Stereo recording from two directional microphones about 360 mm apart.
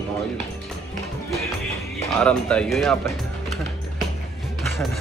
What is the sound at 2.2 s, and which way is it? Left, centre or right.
Speech, centre.